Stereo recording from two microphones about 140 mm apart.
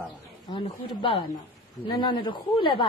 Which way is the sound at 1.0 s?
40° left (ahead or behind).